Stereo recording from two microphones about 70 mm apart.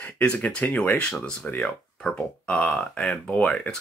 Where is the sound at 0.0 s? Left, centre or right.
Left.